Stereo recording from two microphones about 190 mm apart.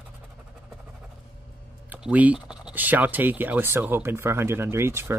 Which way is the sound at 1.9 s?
10° right (ahead or behind).